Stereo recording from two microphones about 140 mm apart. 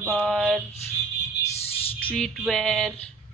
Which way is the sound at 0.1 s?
Centre (ahead or behind).